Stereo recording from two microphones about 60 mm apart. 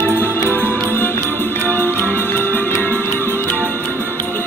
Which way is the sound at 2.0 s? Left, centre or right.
Left.